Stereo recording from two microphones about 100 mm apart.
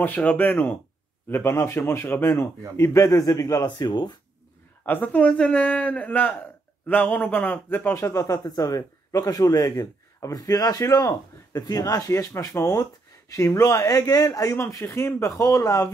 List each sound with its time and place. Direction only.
0.0 s a man's voice: 15° left (ahead or behind); by 4.2 s 45° left (ahead or behind)
4.8 s a man's voice: 15° left (ahead or behind)